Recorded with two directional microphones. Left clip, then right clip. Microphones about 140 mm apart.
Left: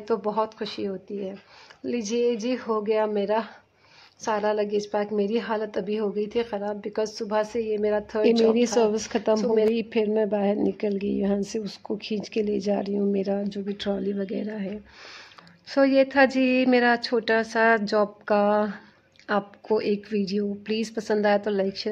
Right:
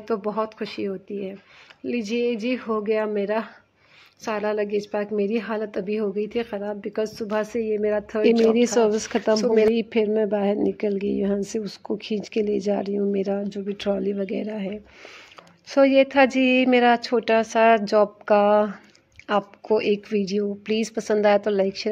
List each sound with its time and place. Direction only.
0.1 s a woman's voice: 5° right (ahead or behind); by 21.8 s 20° right (ahead or behind)